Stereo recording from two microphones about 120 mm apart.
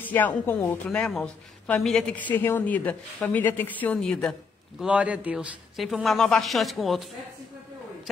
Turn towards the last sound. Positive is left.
turn(degrees=0)  # may be behind; listen again after turning